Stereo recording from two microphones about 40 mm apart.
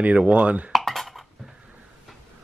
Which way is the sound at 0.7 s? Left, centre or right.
Centre.